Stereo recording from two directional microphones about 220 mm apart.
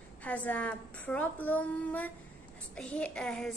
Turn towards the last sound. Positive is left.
turn(degrees=0)  # may be behind; listen again after turning